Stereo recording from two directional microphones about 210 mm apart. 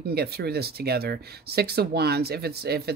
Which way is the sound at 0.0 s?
50° right (ahead or behind).